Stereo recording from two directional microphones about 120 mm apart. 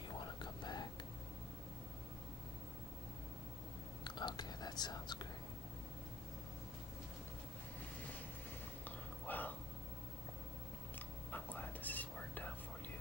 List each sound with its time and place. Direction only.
0.2 s whispering: 40° left (ahead or behind)
4.0 s whispering: 40° left (ahead or behind)
8.8 s a sound: 15° left (ahead or behind)
11.3 s whispering: 15° left (ahead or behind)